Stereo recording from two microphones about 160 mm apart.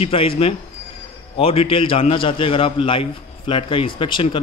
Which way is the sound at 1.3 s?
35° left (ahead or behind).